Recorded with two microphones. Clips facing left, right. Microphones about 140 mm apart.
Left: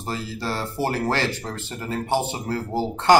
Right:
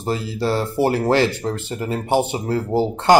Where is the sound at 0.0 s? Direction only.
20° right (ahead or behind).